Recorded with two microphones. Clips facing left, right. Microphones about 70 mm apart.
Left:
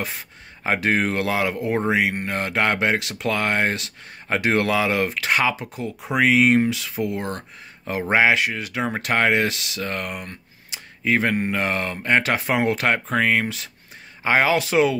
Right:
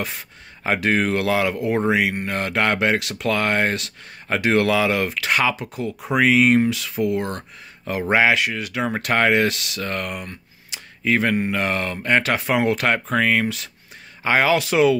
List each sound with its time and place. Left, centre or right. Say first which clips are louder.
0.7 s speech: right 1 dB; left
8.8 s speech: right 1 dB; centre
10.2 s a sound: right 1 dB; left
11.5 s speech: right 1 dB; left